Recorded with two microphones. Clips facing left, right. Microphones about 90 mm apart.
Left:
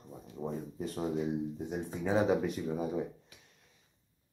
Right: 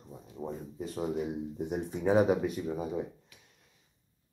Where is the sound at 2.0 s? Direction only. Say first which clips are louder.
Right 4 dB; 15° right (ahead or behind).